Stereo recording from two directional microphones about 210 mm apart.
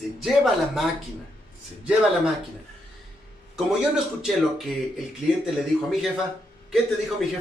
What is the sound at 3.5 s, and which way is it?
A man's voice, centre (ahead or behind).